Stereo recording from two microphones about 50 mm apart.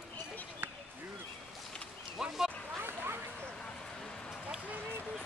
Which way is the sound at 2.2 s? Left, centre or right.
Centre.